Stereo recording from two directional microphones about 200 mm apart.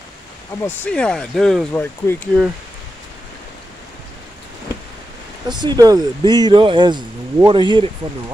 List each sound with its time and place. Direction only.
0.5 s speech: 10° left (ahead or behind)
5.5 s speech: 20° right (ahead or behind)